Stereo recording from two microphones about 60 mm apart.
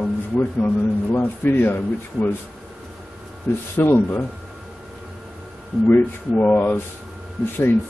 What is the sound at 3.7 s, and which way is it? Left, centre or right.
Speech, left.